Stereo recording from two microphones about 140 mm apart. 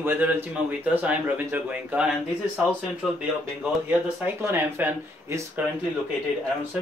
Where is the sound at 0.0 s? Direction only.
15° right (ahead or behind).